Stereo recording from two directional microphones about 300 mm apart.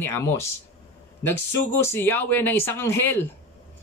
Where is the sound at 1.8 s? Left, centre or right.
Centre.